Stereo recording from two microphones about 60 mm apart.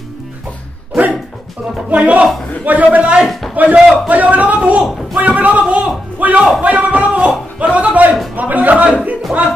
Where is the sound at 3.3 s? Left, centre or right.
Centre.